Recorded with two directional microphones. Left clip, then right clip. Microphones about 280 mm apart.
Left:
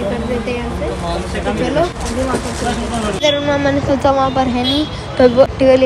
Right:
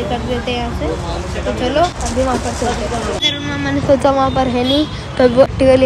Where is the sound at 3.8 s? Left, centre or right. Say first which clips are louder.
Right 5 dB; right.